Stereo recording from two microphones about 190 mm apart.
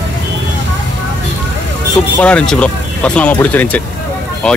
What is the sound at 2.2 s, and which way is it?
Speech, 5° left (ahead or behind).